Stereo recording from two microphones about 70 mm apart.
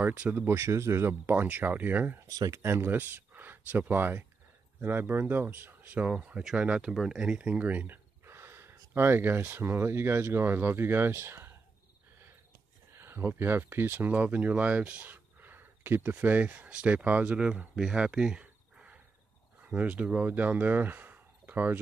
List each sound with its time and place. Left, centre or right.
0.0 s speech: right
0.5 s speech: right
1.3 s speech: right
2.2 s speech: right
2.6 s speech: right
12.9 s speech: right